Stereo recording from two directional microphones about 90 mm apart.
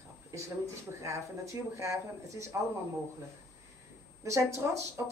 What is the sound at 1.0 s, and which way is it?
Speech, 35° right (ahead or behind).